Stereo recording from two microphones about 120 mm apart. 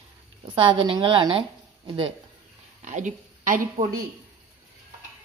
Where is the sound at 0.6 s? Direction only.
45° right (ahead or behind).